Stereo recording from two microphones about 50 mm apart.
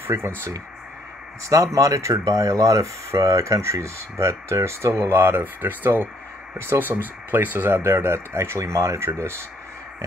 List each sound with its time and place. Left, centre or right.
0.1 s speech: right
1.6 s speech: right
6.6 s speech: right
7.0 s speech: right